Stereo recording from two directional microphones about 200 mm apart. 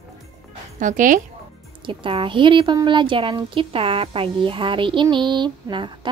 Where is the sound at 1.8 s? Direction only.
25° right (ahead or behind).